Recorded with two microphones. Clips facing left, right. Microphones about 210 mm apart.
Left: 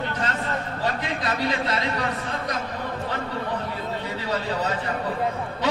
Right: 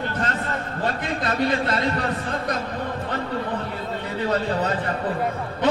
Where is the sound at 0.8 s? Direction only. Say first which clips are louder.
Right 2 dB; 50° right (ahead or behind).